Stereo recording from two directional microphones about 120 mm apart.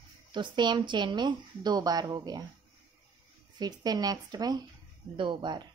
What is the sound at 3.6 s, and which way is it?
Speech, 35° right (ahead or behind).